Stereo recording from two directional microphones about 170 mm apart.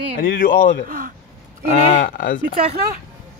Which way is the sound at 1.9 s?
60° left (ahead or behind).